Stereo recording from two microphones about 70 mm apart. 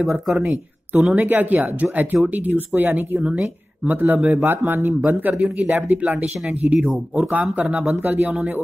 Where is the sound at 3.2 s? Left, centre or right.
Centre.